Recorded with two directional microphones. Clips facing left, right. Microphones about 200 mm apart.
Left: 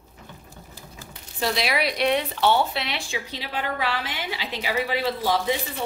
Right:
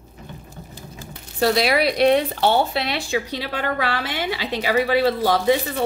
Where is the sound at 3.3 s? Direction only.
65° right (ahead or behind).